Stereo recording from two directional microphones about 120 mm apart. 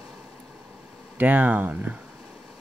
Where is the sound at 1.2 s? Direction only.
10° right (ahead or behind).